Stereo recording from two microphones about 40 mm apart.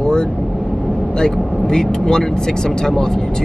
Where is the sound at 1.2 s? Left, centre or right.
Centre.